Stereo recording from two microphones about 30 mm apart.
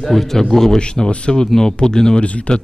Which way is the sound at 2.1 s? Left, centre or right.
Left.